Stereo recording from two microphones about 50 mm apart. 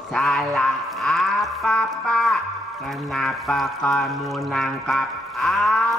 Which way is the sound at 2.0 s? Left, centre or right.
Centre.